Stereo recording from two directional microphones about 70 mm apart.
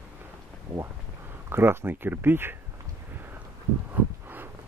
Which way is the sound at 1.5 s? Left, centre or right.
Right.